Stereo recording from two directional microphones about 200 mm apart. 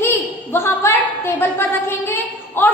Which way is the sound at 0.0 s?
10° left (ahead or behind).